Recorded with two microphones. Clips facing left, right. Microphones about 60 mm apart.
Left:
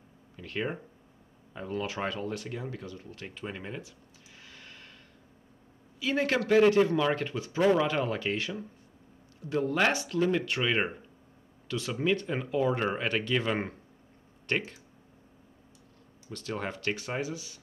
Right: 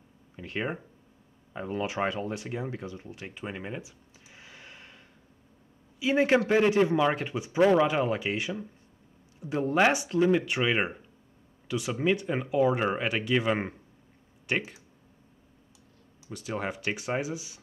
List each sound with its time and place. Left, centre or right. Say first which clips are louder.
0.4 s speech: right 1 dB; centre
4.4 s a sound: right 2 dB; centre
5.9 s speech: right 5 dB; centre
16.3 s speech: right 2 dB; centre